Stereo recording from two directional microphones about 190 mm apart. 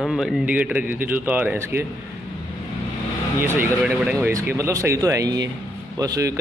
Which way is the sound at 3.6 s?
10° right (ahead or behind).